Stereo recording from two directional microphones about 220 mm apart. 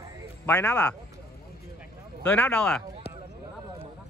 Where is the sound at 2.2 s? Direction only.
5° left (ahead or behind).